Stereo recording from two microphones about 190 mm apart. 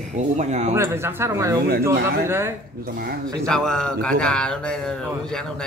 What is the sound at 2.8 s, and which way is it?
Speech, 50° right (ahead or behind).